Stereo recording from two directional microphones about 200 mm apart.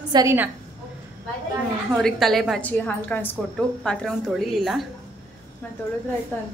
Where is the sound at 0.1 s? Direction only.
15° right (ahead or behind).